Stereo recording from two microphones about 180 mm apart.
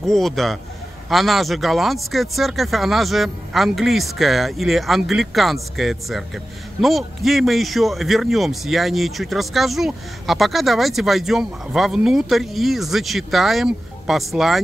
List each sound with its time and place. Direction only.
0.0 s speech: centre (ahead or behind)